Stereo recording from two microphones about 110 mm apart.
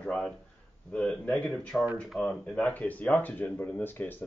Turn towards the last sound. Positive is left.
turn(degrees=20)  # may be behind; listen again after turning